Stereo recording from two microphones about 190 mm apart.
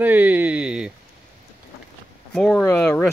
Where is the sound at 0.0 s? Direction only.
10° right (ahead or behind).